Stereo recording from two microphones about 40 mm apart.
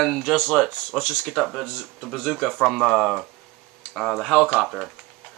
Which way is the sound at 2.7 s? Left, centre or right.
Centre.